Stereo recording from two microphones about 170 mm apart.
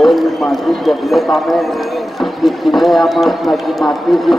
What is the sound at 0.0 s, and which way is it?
A man's voice, centre (ahead or behind).